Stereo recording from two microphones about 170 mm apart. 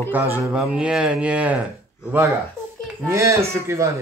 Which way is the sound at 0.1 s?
10° right (ahead or behind).